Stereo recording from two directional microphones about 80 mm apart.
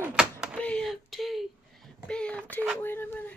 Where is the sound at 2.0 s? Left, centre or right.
Centre.